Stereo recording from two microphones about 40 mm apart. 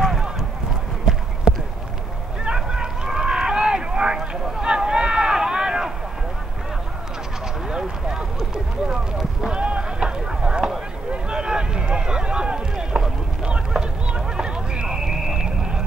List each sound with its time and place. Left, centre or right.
2.5 s run: centre
9.5 s run: right
13.5 s a sound: right
15.0 s clip-clop: centre